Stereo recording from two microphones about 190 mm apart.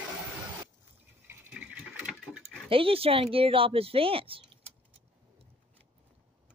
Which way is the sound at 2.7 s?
30° right (ahead or behind).